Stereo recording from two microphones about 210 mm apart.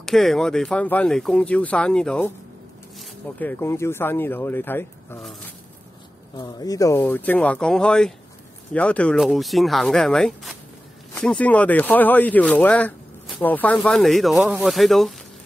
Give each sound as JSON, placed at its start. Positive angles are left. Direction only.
{"t": 0.0, "sound": "speech", "side_deg": 0}
{"t": 6.3, "sound": "speech", "side_deg": 20}